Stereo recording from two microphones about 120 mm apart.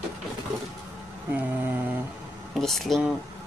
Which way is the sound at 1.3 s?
15° right (ahead or behind).